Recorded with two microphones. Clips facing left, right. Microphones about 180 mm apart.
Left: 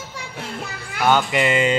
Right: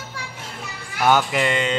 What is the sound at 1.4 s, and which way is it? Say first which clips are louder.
Music: left 3 dB; 5° left (ahead or behind).